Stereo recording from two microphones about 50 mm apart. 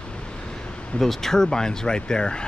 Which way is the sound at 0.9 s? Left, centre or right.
Centre.